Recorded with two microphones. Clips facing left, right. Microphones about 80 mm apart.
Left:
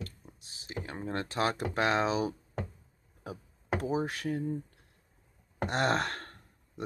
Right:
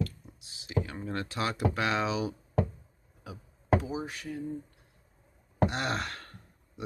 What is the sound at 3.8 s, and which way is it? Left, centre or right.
Speech, left.